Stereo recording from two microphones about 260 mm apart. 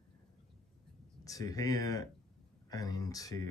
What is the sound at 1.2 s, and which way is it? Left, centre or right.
Speech, centre.